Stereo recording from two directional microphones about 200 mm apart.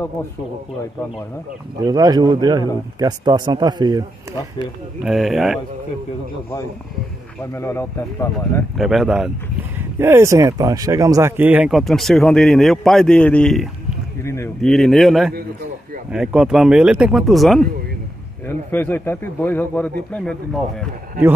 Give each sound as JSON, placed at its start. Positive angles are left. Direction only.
{"t": 1.8, "sound": "a man's voice", "side_deg": -20}
{"t": 5.0, "sound": "speech", "side_deg": 0}
{"t": 7.5, "sound": "speech", "side_deg": 15}
{"t": 8.7, "sound": "speech", "side_deg": 0}
{"t": 14.2, "sound": "speech", "side_deg": 15}
{"t": 14.6, "sound": "speech", "side_deg": 0}